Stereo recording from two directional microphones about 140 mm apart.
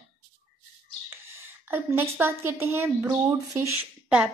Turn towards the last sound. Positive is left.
turn(degrees=-10)  # may be behind; listen again after turning